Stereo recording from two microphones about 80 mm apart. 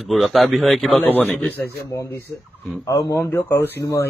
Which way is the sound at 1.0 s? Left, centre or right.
Centre.